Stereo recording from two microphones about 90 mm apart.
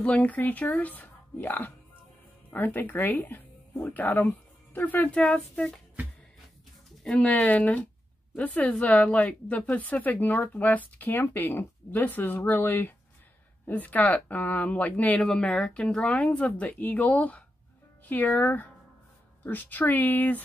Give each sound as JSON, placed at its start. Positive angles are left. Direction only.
{"t": 0.0, "sound": "speech", "side_deg": 15}
{"t": 7.0, "sound": "speech", "side_deg": 10}